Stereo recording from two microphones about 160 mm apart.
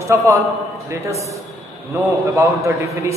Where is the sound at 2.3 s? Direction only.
20° right (ahead or behind).